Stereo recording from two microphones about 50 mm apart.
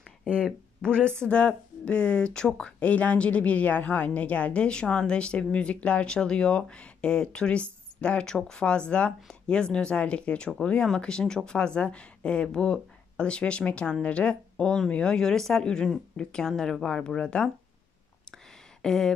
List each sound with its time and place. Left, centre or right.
0.8 s a woman's voice: centre
18.8 s speech: centre